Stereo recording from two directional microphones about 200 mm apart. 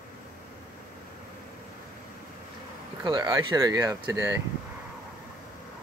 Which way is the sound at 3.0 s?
20° right (ahead or behind).